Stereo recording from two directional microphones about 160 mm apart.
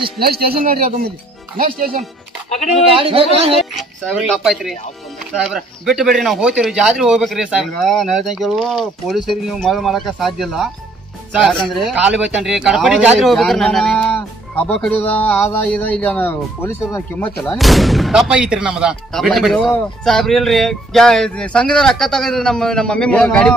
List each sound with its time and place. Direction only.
0.2 s speech: 75° right (ahead or behind)
3.0 s speech: 35° right (ahead or behind)
4.3 s a man's voice: centre (ahead or behind)
17.4 s speech: centre (ahead or behind)